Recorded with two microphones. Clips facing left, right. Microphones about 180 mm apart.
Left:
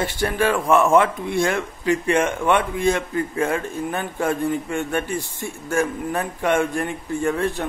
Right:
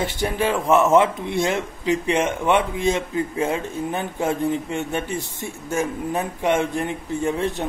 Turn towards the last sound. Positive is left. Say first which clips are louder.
# left 1 dB
turn(degrees=-20)  # may be behind; listen again after turning